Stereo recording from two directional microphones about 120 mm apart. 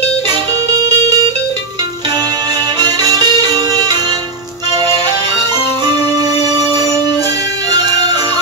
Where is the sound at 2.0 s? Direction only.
35° right (ahead or behind).